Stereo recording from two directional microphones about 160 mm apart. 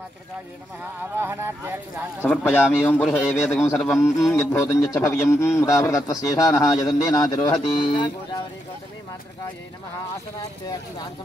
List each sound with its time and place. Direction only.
1.1 s speech: 15° right (ahead or behind)
2.2 s a man's voice: 10° left (ahead or behind)
2.6 s a man's voice: 5° right (ahead or behind); by 8.4 s 30° left (ahead or behind)